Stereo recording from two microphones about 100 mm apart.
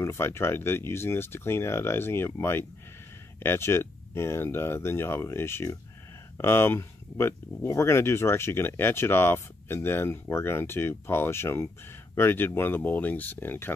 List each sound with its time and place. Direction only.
0.0 s speech: 25° left (ahead or behind)